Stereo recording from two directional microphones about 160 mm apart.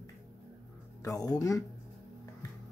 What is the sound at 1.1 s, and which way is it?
Speech, 20° left (ahead or behind).